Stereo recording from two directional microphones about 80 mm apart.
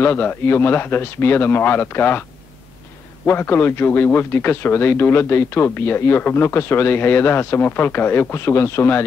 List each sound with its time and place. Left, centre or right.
0.0 s a man's voice: left
3.3 s a man's voice: left